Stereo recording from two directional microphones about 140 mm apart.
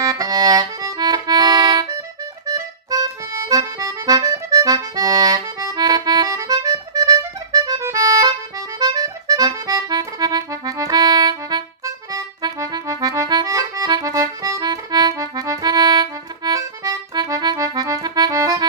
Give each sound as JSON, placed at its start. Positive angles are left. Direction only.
{"t": 0.0, "sound": "accordion", "side_deg": -25}